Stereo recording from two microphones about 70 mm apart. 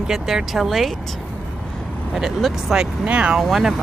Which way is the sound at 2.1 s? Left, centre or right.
Centre.